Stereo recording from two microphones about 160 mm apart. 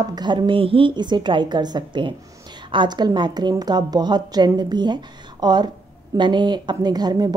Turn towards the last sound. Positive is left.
turn(degrees=-25)  # may be behind; listen again after turning